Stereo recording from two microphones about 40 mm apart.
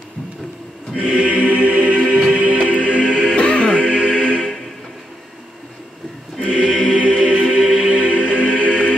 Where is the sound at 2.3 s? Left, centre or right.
Right.